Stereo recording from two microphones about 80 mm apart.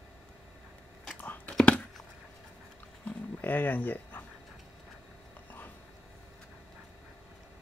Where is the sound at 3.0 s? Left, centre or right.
Left.